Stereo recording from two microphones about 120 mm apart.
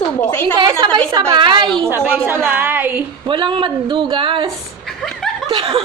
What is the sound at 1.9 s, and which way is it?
A woman's voice, 15° right (ahead or behind).